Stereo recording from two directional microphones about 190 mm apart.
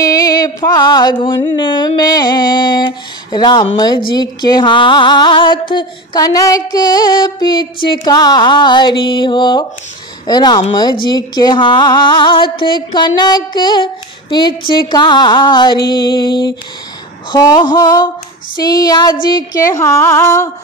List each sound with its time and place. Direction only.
0.0 s music: 20° left (ahead or behind)
19.2 s a woman's voice: 20° left (ahead or behind)